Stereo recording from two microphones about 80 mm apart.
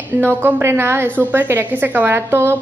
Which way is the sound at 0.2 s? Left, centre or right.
Right.